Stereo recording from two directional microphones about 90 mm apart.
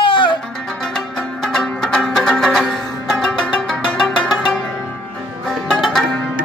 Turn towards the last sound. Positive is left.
turn(degrees=5)  # may be behind; listen again after turning